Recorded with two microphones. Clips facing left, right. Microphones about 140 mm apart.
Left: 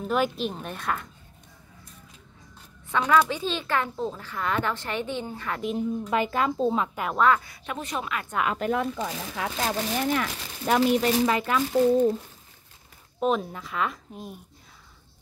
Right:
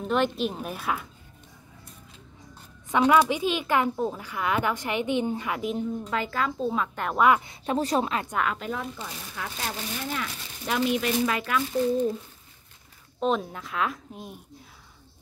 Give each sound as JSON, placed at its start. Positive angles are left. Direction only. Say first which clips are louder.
{"t": 0.0, "sound": "a woman's voice", "louder": "right 1 dB", "side_deg": 0}
{"t": 2.9, "sound": "speech", "louder": "right 2 dB", "side_deg": -15}
{"t": 6.0, "sound": "speech", "louder": "left 3 dB", "side_deg": 20}
{"t": 7.2, "sound": "speech", "louder": "right 1 dB", "side_deg": -15}
{"t": 7.6, "sound": "speech", "louder": "right 7 dB", "side_deg": -35}
{"t": 8.7, "sound": "speech", "louder": "left 7 dB", "side_deg": 90}
{"t": 10.8, "sound": "speech", "louder": "left 2 dB", "side_deg": 35}
{"t": 11.7, "sound": "speech", "louder": "left 5 dB", "side_deg": 45}
{"t": 13.2, "sound": "a woman's voice", "louder": "left 1 dB", "side_deg": 0}